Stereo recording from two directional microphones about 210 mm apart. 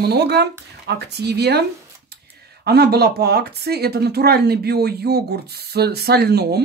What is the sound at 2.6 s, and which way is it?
Speech, 50° right (ahead or behind).